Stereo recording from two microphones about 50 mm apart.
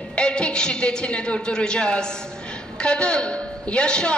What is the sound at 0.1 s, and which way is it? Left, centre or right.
A man's voice, left.